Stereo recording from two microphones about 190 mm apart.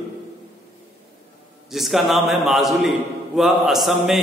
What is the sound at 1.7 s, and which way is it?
A man's voice, centre (ahead or behind).